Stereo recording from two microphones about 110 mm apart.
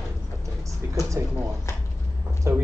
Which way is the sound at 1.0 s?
20° right (ahead or behind).